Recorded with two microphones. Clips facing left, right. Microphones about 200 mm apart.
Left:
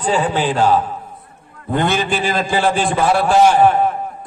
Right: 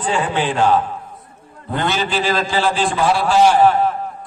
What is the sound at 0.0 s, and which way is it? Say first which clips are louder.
Speech: left 2 dB; 40° left (ahead or behind).